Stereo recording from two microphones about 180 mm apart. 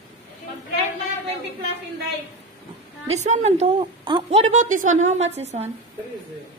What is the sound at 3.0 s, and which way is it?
A woman's voice, 40° right (ahead or behind).